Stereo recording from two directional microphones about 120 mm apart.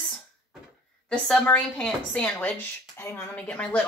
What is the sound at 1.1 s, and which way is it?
Speech, 10° left (ahead or behind).